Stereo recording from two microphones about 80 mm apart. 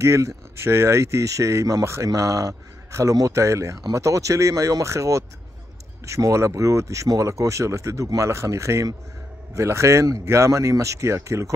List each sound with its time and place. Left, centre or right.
0.0 s speech: right